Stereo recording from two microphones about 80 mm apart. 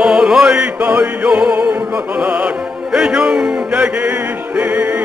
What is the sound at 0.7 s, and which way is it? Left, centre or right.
Music, centre.